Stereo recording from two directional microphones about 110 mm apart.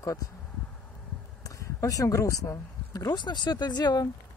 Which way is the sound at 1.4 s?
30° left (ahead or behind).